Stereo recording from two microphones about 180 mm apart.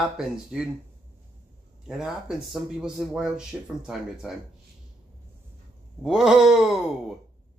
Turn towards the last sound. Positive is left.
turn(degrees=0)  # may be behind; listen again after turning